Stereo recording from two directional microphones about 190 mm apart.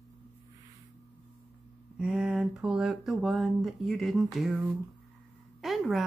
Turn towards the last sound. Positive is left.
turn(degrees=0)  # may be behind; listen again after turning